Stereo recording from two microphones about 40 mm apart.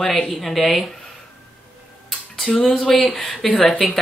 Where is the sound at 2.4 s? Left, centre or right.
Centre.